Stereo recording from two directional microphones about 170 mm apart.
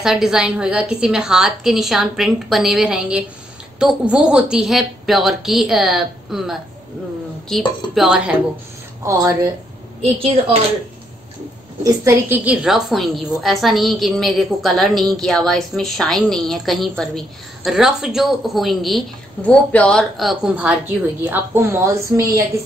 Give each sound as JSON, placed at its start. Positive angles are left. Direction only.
{"t": 0.0, "sound": "a woman's voice", "side_deg": 0}
{"t": 9.0, "sound": "a woman's voice", "side_deg": -20}
{"t": 11.8, "sound": "a woman's voice", "side_deg": -15}
{"t": 12.6, "sound": "a woman's voice", "side_deg": 0}